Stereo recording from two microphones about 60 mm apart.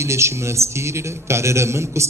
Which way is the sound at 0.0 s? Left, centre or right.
Right.